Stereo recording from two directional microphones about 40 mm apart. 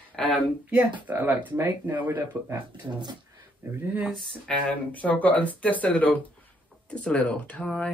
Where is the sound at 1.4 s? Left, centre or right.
Right.